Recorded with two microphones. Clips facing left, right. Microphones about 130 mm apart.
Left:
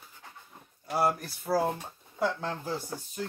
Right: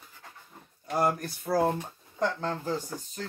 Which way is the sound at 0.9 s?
5° left (ahead or behind).